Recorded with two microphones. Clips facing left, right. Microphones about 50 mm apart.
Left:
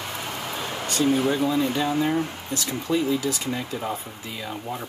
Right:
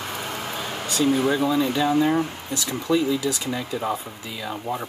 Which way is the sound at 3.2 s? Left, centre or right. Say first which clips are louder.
Right 1 dB; left.